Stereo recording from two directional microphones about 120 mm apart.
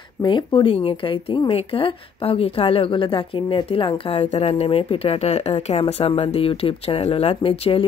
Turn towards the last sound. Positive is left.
turn(degrees=55)  # may be behind; listen again after turning